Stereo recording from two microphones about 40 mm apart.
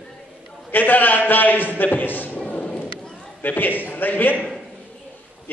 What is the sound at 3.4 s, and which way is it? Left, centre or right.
Speech, left.